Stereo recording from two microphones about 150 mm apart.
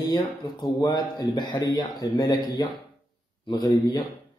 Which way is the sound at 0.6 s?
30° left (ahead or behind).